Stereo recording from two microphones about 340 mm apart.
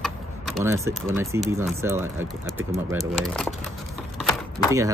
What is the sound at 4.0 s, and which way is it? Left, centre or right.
Typing, centre.